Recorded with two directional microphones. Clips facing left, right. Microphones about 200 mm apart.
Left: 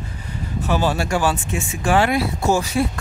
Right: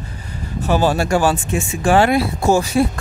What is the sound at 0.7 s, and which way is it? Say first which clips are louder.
Speech: right 4 dB; 40° right (ahead or behind).